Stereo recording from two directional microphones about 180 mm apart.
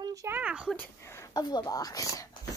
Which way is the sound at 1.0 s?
15° left (ahead or behind).